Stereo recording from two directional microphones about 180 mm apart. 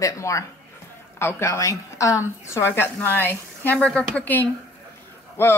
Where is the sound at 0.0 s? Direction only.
15° left (ahead or behind).